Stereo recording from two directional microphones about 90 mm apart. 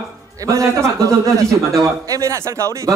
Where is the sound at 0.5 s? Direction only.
40° right (ahead or behind).